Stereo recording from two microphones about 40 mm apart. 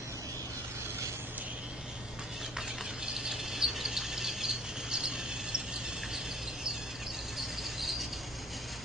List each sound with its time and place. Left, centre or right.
3.2 s cricket: centre
7.3 s squeal: centre